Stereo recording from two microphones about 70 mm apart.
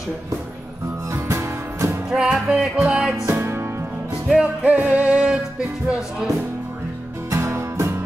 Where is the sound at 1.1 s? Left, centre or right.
Right.